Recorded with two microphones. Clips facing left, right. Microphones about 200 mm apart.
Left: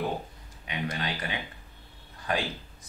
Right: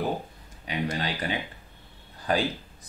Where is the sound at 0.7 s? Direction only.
30° right (ahead or behind).